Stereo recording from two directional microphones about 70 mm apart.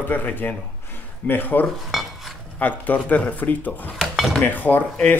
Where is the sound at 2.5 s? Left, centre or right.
Left.